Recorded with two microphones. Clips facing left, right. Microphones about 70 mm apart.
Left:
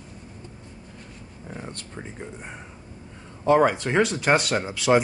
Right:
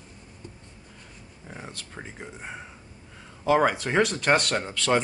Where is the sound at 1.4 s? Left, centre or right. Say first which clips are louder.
Left 3 dB; centre.